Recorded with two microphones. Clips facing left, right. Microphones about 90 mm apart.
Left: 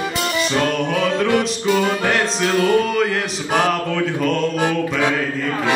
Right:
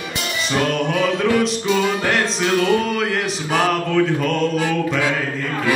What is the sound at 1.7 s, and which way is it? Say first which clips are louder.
Music: left 4 dB; 20° left (ahead or behind).